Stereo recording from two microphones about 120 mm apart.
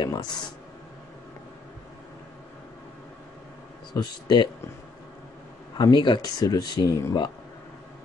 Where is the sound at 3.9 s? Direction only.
35° left (ahead or behind).